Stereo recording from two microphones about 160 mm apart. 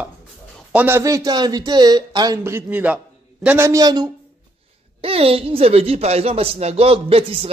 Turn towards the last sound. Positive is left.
turn(degrees=-35)  # may be behind; listen again after turning